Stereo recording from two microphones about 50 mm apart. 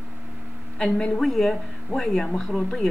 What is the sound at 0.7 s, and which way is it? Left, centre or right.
Speech, centre.